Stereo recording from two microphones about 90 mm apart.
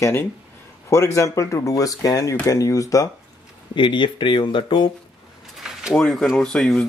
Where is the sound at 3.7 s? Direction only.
60° left (ahead or behind).